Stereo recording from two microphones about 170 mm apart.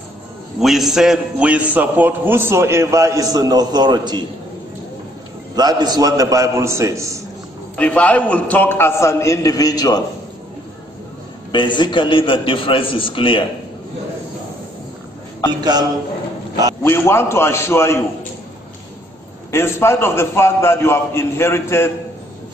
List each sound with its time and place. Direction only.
0.6 s a man's voice: centre (ahead or behind); by 4.2 s 25° right (ahead or behind)
5.6 s a man's voice: 25° right (ahead or behind)
7.7 s a man's voice: 10° left (ahead or behind)
11.5 s a man's voice: 25° left (ahead or behind)
16.8 s a man's voice: 15° left (ahead or behind)
19.5 s a man's voice: 15° left (ahead or behind)